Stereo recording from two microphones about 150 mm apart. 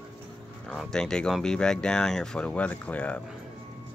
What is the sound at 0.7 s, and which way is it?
Speech, 5° left (ahead or behind).